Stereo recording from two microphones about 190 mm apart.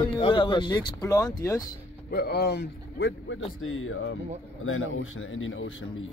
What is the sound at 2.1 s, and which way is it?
A man's voice, 55° left (ahead or behind).